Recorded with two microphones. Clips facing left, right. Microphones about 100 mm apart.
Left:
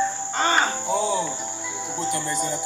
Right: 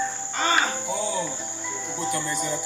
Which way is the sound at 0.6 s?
35° left (ahead or behind).